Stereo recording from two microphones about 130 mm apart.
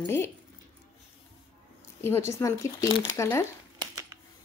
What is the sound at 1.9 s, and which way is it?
A woman's voice, 20° left (ahead or behind).